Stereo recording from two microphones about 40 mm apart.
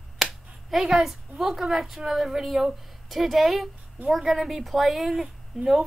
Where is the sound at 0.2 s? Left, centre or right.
Centre.